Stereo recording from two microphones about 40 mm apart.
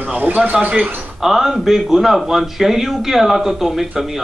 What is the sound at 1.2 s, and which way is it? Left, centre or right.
Speech, centre.